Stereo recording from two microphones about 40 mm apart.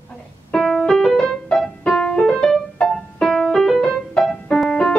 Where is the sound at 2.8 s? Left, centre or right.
Left.